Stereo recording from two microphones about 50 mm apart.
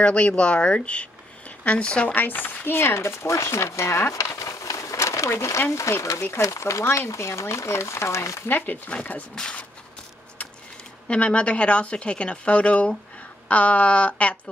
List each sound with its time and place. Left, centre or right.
0.0 s a woman's voice: left
2.1 s speech: left
4.1 s a sound: left
5.7 s speech: left
6.4 s speech: left
8.5 s speech: left
9.3 s speech: centre
11.1 s a woman's voice: left